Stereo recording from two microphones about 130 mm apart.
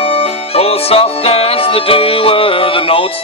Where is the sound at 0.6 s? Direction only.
50° left (ahead or behind).